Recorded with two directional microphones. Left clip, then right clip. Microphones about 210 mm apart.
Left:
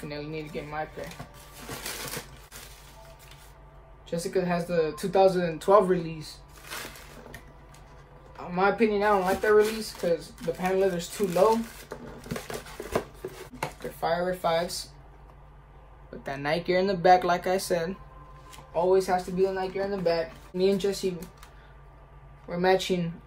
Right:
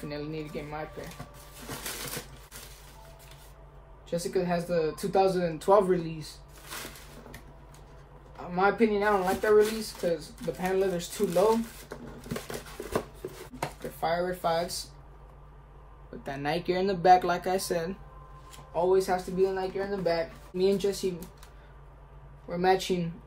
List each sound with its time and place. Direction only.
0.1 s speech: 15° left (ahead or behind)
1.7 s a sound: centre (ahead or behind)
4.1 s speech: 10° left (ahead or behind)
8.4 s speech: 10° left (ahead or behind)
9.4 s speech: 5° right (ahead or behind)
10.7 s speech: 10° left (ahead or behind)
11.2 s a sound: 5° right (ahead or behind)
13.8 s speech: 5° left (ahead or behind)
16.3 s speech: 20° left (ahead or behind)
22.5 s speech: 15° left (ahead or behind)